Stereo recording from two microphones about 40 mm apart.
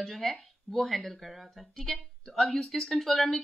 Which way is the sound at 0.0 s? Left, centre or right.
Centre.